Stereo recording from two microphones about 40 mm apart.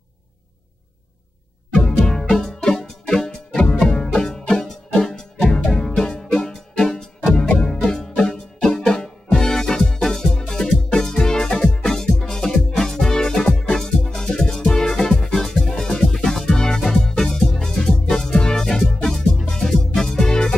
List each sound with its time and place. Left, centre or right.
2.0 s music: centre